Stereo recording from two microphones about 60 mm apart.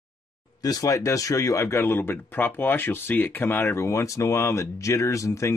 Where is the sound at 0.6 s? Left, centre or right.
Left.